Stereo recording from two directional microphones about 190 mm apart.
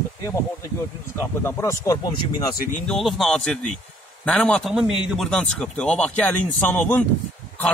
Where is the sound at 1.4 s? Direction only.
15° left (ahead or behind).